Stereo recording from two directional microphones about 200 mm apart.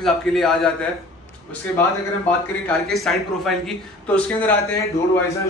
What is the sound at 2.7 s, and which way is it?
A man's voice, centre (ahead or behind).